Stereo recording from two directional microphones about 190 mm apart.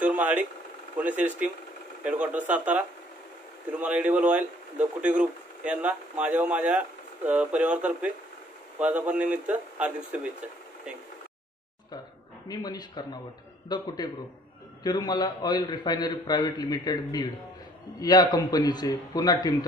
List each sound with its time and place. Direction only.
0.0 s a sound: 10° right (ahead or behind)
0.9 s a man's voice: 10° right (ahead or behind)
3.8 s a man's voice: 10° right (ahead or behind)
12.4 s a man's voice: 20° left (ahead or behind)